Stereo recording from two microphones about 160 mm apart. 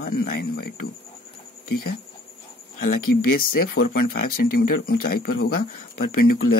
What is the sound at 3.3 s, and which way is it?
Speech, 75° left (ahead or behind).